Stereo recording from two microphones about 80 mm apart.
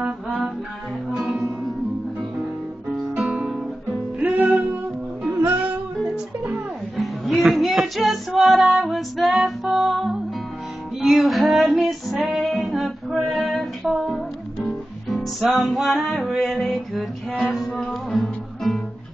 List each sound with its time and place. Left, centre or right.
1.1 s music: centre
3.2 s music: centre
7.0 s music: centre
11.0 s female singing: centre
15.5 s music: centre